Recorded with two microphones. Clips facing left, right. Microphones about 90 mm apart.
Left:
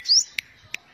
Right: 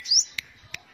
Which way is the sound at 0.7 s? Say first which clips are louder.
Left 3 dB; 10° right (ahead or behind).